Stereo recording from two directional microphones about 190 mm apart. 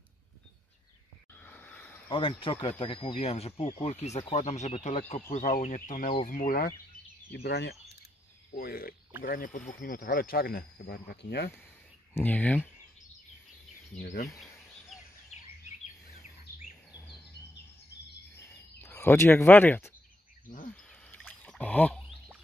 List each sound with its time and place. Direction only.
1.4 s a sound: 10° left (ahead or behind)
2.0 s speech: 25° left (ahead or behind); by 6.7 s 45° left (ahead or behind)
7.2 s speech: 60° left (ahead or behind)
8.5 s speech: 50° left (ahead or behind)
12.1 s speech: 10° left (ahead or behind)
13.9 s speech: 40° left (ahead or behind)
18.8 s speech: 10° left (ahead or behind)
20.4 s speech: 45° left (ahead or behind)
20.7 s a sound: 5° left (ahead or behind)